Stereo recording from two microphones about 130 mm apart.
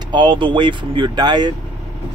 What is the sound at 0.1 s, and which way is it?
Speech, 40° right (ahead or behind).